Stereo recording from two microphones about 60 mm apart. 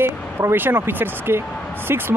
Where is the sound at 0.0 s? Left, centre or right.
Right.